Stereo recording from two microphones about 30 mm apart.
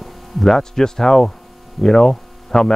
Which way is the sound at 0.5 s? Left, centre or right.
Centre.